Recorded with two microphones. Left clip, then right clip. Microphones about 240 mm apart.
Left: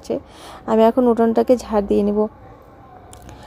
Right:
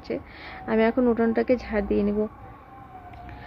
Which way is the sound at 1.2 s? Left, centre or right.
Centre.